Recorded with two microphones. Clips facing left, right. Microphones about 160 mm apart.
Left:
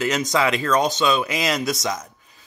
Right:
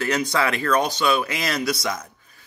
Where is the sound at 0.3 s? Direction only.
20° left (ahead or behind).